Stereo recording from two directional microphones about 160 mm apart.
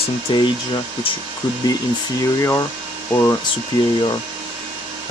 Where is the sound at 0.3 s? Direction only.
30° left (ahead or behind).